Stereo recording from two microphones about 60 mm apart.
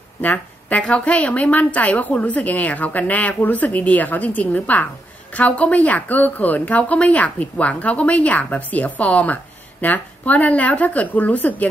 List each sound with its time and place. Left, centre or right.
0.2 s a woman's voice: left